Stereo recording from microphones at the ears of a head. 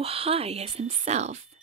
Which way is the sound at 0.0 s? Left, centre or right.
Right.